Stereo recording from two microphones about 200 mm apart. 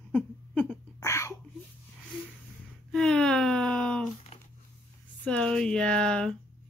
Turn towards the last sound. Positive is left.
turn(degrees=5)  # may be behind; listen again after turning